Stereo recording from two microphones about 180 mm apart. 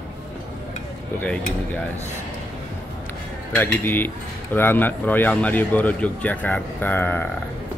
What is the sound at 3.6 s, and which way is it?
Cutlery, 10° left (ahead or behind).